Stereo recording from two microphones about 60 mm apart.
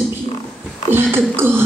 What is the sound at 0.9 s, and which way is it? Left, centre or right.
Speech, right.